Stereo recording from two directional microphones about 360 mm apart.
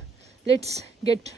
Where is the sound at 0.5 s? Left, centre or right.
Centre.